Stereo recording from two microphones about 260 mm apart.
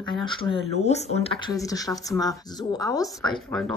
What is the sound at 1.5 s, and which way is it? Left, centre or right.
A woman's voice, centre.